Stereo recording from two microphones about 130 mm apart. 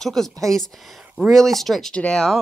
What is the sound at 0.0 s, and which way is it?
Speech, 5° left (ahead or behind).